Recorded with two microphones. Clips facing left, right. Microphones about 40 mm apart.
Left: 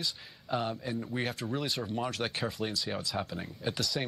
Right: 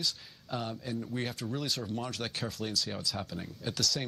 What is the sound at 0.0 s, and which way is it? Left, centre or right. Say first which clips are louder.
Speech: right 1 dB; centre.